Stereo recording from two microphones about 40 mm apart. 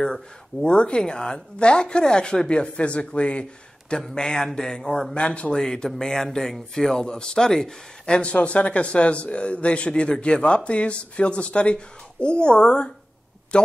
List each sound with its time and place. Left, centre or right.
0.0 s speech: centre
0.7 s a man's voice: left
4.1 s speech: centre
5.1 s a man's voice: left
5.6 s speech: centre
8.2 s a man's voice: left